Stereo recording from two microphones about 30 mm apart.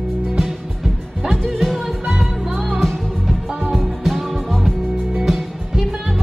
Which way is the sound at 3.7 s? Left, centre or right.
Centre.